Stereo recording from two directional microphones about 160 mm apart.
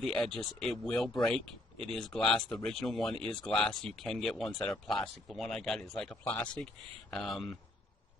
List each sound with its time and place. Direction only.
0.0 s speech: centre (ahead or behind)